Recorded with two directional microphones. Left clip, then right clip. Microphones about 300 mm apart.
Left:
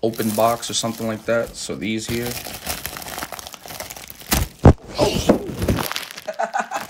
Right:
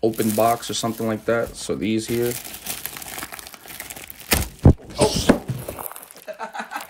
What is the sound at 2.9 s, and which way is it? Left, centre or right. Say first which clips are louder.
Crumpling: left 4 dB; centre.